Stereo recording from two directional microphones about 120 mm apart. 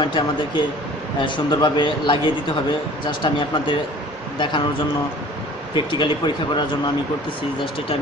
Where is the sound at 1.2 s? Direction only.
40° left (ahead or behind).